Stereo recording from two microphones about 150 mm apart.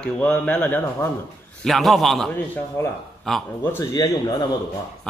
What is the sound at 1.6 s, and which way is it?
Speech, centre (ahead or behind).